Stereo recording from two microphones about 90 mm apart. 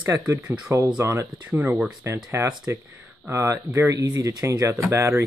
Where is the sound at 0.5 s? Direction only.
35° right (ahead or behind); by 1.8 s 20° right (ahead or behind).